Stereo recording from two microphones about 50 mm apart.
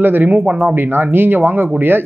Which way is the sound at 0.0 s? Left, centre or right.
Right.